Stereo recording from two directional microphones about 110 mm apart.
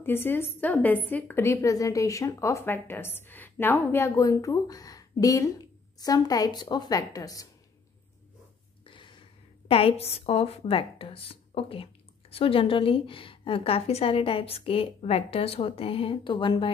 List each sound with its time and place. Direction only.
0.0 s speech: 20° left (ahead or behind)
4.1 s a woman's voice: 30° left (ahead or behind)
8.8 s a sound: 50° left (ahead or behind)
9.7 s speech: 60° left (ahead or behind)